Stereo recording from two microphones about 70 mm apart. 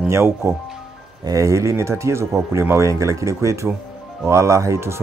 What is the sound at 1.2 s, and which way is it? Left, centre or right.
Speech, right.